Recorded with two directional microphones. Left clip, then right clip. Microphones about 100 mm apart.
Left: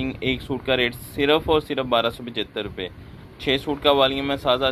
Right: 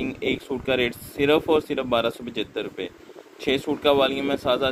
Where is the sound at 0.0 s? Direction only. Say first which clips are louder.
Left 1 dB; 15° right (ahead or behind).